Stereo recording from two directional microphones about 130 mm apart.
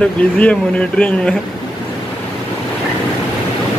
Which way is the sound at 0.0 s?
10° left (ahead or behind).